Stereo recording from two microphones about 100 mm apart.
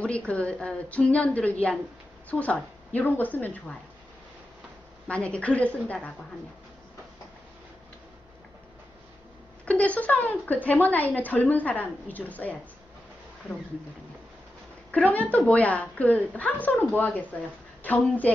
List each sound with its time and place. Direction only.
0.0 s speech: 10° left (ahead or behind)
5.0 s speech: 10° left (ahead or behind)
9.7 s speech: 15° left (ahead or behind)
14.9 s speech: 15° left (ahead or behind)